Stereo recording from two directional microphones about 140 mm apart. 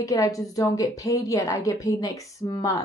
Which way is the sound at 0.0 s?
25° left (ahead or behind).